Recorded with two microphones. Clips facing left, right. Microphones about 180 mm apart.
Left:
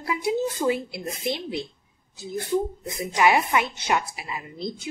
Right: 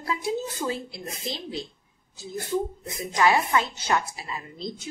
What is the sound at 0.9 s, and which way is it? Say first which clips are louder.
Speech: left 5 dB; 70° left (ahead or behind).